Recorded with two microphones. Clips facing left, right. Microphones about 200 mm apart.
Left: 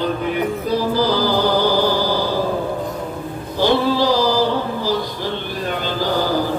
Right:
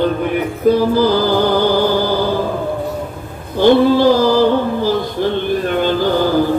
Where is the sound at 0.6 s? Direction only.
55° right (ahead or behind).